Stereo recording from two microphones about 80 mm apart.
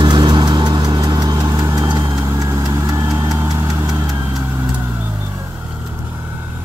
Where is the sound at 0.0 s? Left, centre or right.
Right.